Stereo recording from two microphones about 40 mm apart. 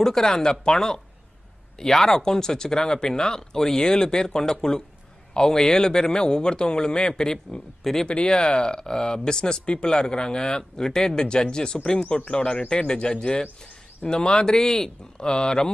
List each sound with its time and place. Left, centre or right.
0.0 s speech: centre
8.1 s speech: left